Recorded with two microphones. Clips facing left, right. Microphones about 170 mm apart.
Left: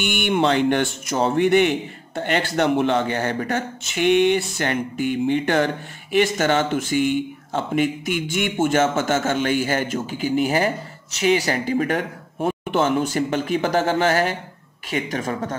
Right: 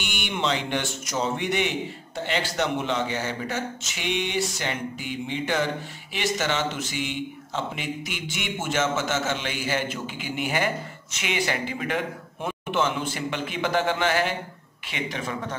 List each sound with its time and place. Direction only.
0.0 s speech: 55° left (ahead or behind)